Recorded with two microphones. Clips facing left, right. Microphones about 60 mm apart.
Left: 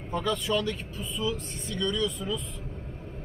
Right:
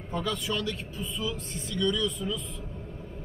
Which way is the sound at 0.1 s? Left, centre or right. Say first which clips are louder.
Left 3 dB; centre.